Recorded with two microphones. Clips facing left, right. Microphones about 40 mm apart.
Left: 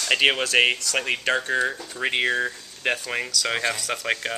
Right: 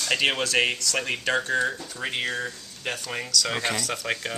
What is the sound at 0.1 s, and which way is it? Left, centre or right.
Speech, centre.